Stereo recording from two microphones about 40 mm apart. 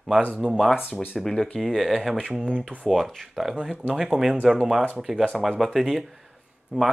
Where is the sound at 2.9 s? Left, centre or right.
Centre.